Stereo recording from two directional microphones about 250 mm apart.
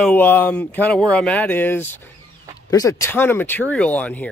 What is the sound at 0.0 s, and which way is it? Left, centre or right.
Speech, centre.